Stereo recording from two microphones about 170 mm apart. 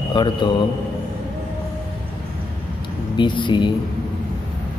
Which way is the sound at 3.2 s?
30° left (ahead or behind).